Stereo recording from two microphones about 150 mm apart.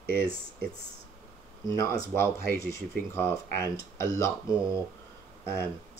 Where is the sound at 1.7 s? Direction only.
20° left (ahead or behind).